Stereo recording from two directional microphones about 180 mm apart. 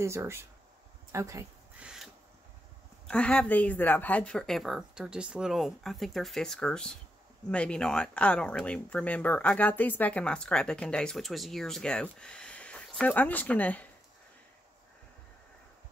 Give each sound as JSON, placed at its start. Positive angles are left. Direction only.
{"t": 0.0, "sound": "speech", "side_deg": -15}
{"t": 1.8, "sound": "a sound", "side_deg": -5}
{"t": 3.1, "sound": "speech", "side_deg": 5}